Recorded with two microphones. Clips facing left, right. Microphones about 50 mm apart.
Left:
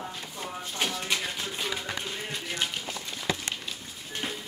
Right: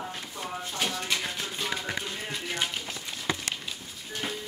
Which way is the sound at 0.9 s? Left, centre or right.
Centre.